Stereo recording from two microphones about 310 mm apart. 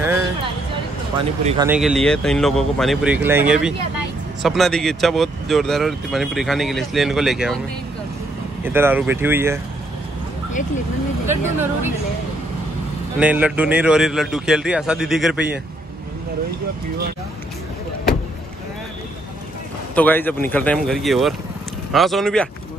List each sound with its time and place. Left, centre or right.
1.4 s a man's voice: centre
1.7 s speech: centre
8.6 s speech: centre
11.2 s speech: centre
13.2 s speech: centre
20.0 s speech: centre